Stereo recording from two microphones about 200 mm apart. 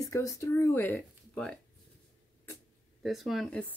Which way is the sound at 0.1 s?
15° left (ahead or behind).